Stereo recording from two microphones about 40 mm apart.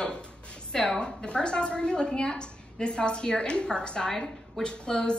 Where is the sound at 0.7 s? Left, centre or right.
Centre.